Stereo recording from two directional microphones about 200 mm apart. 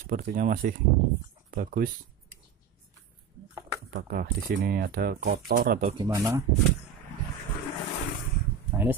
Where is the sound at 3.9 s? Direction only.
45° right (ahead or behind).